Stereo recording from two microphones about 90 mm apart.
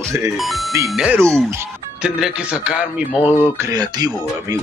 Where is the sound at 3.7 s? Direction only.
50° right (ahead or behind).